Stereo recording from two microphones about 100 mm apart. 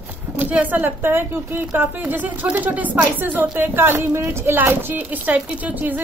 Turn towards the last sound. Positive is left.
turn(degrees=-15)  # may be behind; listen again after turning